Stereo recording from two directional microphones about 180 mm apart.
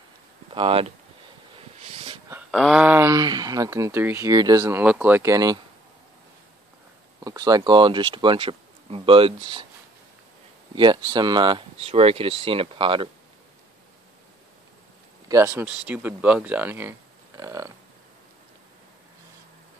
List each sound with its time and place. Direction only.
0.5 s speech: 30° right (ahead or behind)
1.8 s dog: 35° right (ahead or behind)
2.5 s speech: centre (ahead or behind); by 5.6 s 20° right (ahead or behind)
7.2 s speech: 20° right (ahead or behind)
10.7 s speech: 25° right (ahead or behind)
15.2 s speech: 15° right (ahead or behind)